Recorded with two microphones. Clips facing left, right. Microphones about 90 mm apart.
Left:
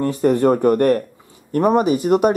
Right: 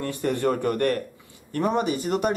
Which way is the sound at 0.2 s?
40° left (ahead or behind).